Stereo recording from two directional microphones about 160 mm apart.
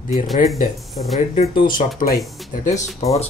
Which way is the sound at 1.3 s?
55° left (ahead or behind).